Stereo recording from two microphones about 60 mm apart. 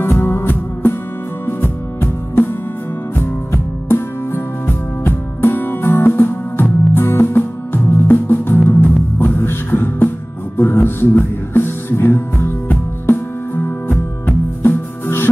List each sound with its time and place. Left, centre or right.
0.0 s music: left
3.5 s music: left